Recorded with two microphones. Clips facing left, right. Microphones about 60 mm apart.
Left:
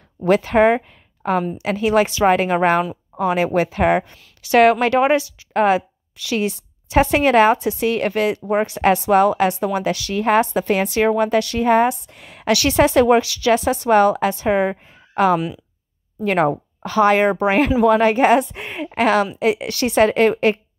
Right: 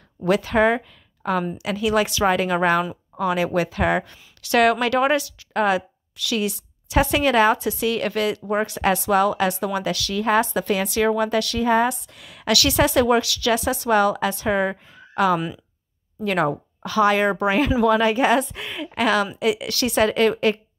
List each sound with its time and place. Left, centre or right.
0.2 s a woman's voice: left
17.8 s a woman's voice: left